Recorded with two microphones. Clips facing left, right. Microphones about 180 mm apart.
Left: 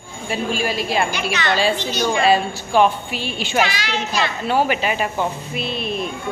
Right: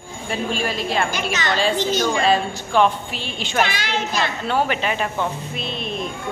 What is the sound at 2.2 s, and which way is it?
Speech, 10° left (ahead or behind).